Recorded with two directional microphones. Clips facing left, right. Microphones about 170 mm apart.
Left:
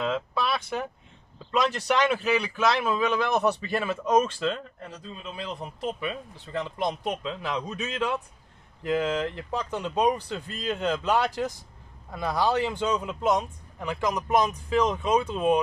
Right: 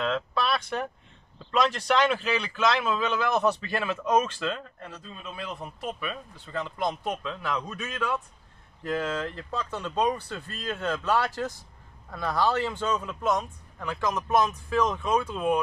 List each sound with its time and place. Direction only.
0.0 s a sound: 10° left (ahead or behind)
1.5 s a man's voice: 5° left (ahead or behind)
5.6 s a man's voice: 20° left (ahead or behind)